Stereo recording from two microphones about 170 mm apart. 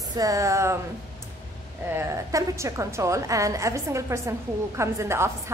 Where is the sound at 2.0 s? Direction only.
15° right (ahead or behind).